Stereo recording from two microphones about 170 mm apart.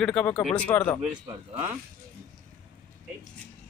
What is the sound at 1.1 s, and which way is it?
Speech, 15° right (ahead or behind).